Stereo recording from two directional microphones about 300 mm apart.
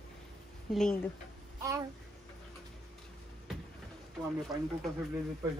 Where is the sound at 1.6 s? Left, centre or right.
Centre.